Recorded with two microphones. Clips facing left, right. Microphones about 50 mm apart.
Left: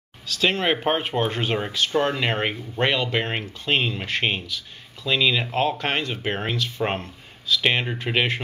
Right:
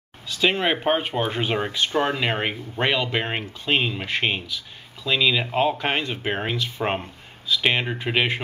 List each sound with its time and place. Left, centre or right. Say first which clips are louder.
0.3 s speech: even; centre
2.1 s speech: even; centre